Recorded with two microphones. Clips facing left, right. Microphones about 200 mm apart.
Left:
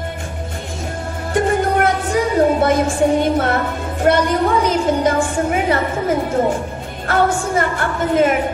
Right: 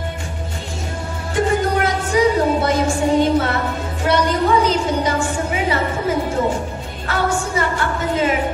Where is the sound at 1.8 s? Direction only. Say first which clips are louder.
Even; 55° left (ahead or behind).